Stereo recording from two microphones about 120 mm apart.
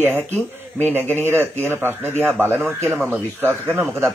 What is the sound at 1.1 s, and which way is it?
Speech, 20° right (ahead or behind).